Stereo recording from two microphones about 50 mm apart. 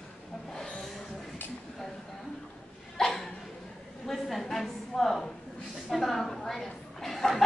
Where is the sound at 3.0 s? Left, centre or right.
Centre.